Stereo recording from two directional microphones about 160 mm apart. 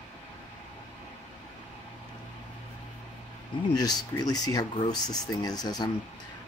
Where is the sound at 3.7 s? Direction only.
25° left (ahead or behind).